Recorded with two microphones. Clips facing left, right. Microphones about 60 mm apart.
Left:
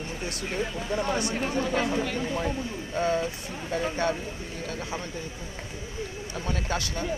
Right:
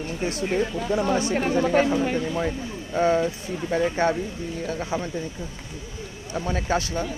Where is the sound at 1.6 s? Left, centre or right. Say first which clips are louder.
Right 7 dB; right.